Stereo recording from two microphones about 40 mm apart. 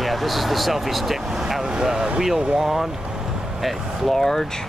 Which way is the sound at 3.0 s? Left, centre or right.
Centre.